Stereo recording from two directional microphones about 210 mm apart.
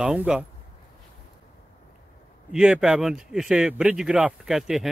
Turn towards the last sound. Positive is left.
turn(degrees=0)  # may be behind; listen again after turning